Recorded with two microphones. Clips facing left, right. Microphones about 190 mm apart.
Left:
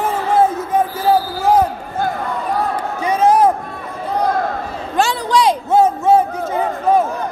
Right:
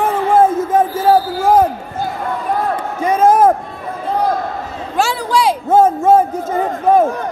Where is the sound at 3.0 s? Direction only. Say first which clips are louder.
Right 2 dB; 50° right (ahead or behind).